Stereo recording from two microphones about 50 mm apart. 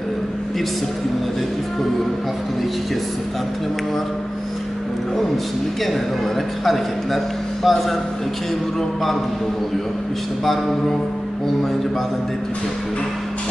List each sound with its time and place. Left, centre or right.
6.6 s a man's voice: centre
10.4 s a man's voice: centre